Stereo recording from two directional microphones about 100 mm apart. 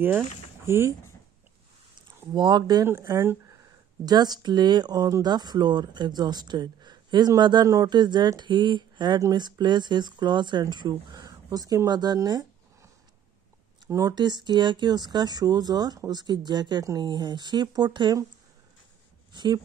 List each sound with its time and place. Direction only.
0.7 s speech: 25° right (ahead or behind)
2.3 s speech: 50° right (ahead or behind)
2.9 s speech: 25° right (ahead or behind)
4.0 s speech: 45° right (ahead or behind)
13.8 s speech: 30° right (ahead or behind)
14.1 s speech: 45° right (ahead or behind)
19.3 s speech: 45° right (ahead or behind)